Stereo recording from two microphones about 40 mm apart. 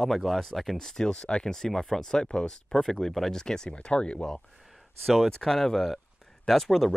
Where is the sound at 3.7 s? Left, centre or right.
Left.